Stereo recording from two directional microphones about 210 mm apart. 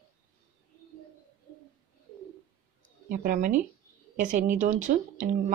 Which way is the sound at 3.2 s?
40° right (ahead or behind).